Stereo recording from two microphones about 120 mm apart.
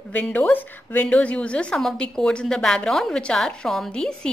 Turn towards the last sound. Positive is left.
turn(degrees=5)  # may be behind; listen again after turning